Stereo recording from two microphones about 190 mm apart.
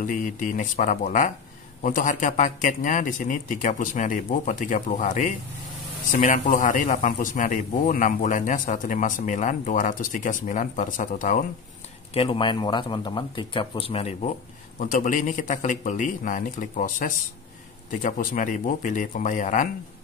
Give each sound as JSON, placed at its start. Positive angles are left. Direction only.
{"t": 0.0, "sound": "a man's voice", "side_deg": 45}
{"t": 12.1, "sound": "speech", "side_deg": 30}
{"t": 14.8, "sound": "a man's voice", "side_deg": 45}